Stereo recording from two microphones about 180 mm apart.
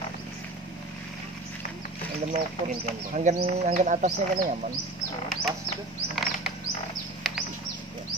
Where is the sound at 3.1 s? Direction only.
40° right (ahead or behind).